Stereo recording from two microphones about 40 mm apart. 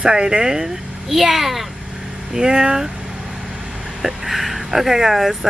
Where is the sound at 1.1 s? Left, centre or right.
Centre.